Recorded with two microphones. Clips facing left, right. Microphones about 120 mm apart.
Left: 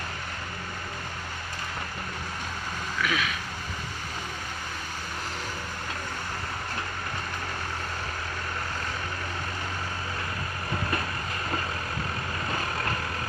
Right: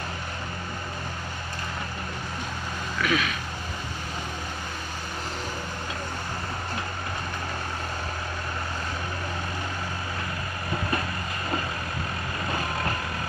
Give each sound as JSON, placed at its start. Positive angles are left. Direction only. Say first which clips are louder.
{"t": 3.0, "sound": "vehicle", "louder": "right 3 dB", "side_deg": 0}